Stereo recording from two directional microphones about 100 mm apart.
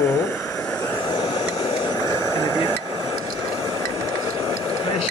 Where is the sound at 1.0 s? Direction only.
50° left (ahead or behind).